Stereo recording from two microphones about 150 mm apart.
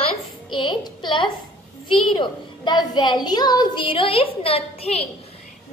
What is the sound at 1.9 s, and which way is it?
A woman's voice, 35° left (ahead or behind).